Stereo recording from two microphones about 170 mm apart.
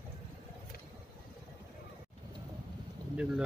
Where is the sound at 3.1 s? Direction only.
5° right (ahead or behind).